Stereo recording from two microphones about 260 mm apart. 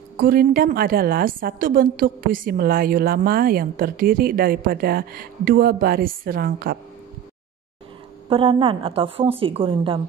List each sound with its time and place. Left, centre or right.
0.2 s a woman's voice: right
8.3 s a woman's voice: centre